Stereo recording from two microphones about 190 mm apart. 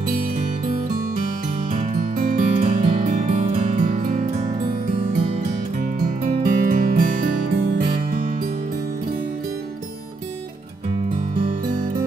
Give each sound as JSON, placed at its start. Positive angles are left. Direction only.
{"t": 1.7, "sound": "music", "side_deg": -35}
{"t": 2.0, "sound": "music", "side_deg": -45}
{"t": 6.4, "sound": "music", "side_deg": -45}